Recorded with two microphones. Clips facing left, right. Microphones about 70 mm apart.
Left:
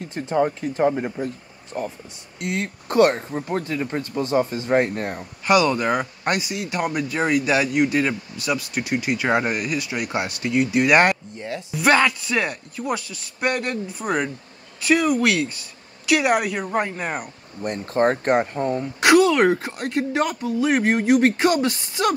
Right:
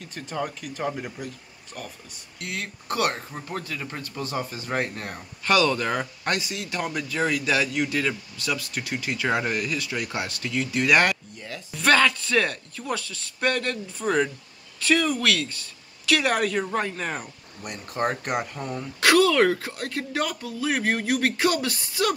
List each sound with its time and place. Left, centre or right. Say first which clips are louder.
0.0 s speech: left 9 dB; left
5.4 s speech: left 3 dB; centre
11.7 s speech: left 2 dB; centre
17.6 s speech: left 8 dB; left